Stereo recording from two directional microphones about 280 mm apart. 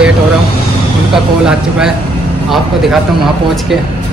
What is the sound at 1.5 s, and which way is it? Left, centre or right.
Speech, centre.